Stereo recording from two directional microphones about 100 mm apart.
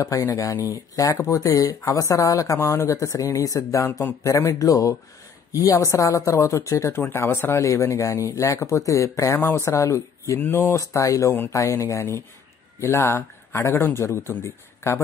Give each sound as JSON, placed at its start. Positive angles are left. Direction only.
{"t": 0.0, "sound": "a man's voice", "side_deg": 35}